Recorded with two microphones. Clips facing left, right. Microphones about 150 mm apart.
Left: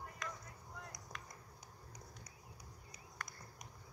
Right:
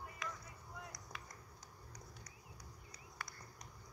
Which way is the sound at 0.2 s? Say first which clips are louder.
Right 1 dB; 5° right (ahead or behind).